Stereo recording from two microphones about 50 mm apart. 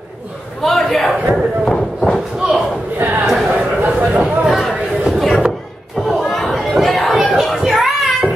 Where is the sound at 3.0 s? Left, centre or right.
Right.